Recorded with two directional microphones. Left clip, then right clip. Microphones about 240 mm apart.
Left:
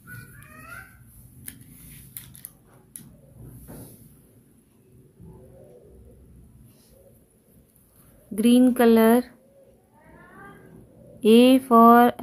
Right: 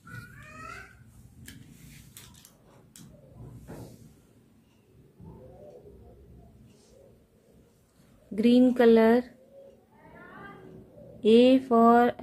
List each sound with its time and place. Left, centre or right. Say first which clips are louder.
1.4 s a sound: left 2 dB; left
8.4 s a woman's voice: left 3 dB; centre
11.1 s speech: left 3 dB; centre